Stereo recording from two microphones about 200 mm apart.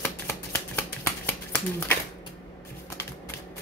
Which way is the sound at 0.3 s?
10° left (ahead or behind).